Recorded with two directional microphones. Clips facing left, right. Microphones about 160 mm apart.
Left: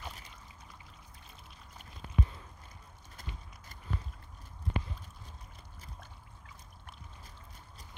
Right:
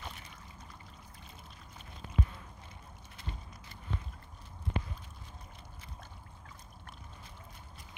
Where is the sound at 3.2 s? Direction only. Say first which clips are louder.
Right 2 dB; 45° left (ahead or behind).